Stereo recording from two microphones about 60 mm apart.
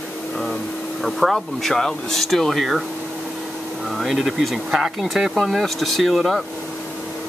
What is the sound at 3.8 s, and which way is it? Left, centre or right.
Speech, centre.